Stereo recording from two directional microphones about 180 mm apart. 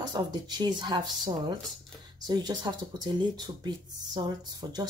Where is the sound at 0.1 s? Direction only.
25° right (ahead or behind).